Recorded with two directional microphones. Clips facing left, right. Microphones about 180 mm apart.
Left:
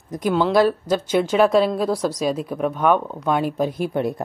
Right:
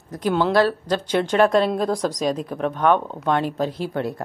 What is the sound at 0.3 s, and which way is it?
A woman's voice, 5° left (ahead or behind).